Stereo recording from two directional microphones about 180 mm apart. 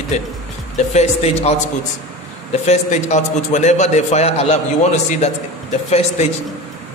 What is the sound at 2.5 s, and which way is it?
A man's voice, 40° left (ahead or behind).